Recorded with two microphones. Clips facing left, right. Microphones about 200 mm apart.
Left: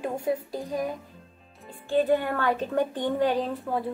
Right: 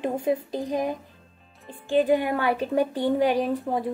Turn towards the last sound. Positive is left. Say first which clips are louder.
# right 3 dB
turn(degrees=-15)  # may be behind; listen again after turning